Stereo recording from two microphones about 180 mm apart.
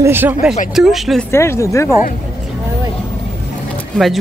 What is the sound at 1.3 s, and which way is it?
Speech, 15° left (ahead or behind).